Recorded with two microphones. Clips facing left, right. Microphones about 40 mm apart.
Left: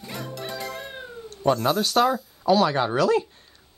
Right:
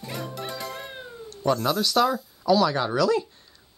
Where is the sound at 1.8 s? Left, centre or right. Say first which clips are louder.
Left 1 dB; left.